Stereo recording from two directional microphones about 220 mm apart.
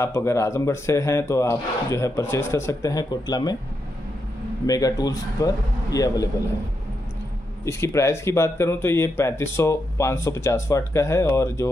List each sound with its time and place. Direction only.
0.0 s speech: 10° left (ahead or behind)
4.6 s speech: 15° left (ahead or behind)
7.6 s speech: 10° left (ahead or behind)